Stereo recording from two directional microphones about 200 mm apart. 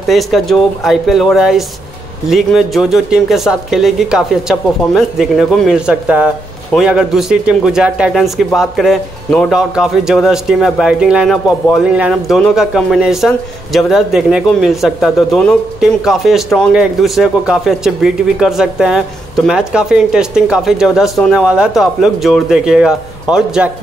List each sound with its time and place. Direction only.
0.0 s speech: centre (ahead or behind)